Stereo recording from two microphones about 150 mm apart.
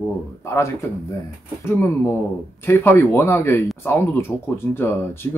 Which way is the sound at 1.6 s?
15° left (ahead or behind).